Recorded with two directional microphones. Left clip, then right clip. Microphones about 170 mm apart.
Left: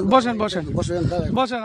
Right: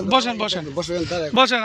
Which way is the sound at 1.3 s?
5° left (ahead or behind).